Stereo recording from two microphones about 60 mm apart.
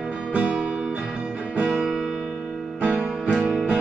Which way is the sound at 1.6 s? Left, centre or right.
Centre.